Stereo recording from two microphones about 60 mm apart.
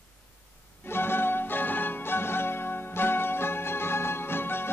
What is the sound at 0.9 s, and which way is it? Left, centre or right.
Music, left.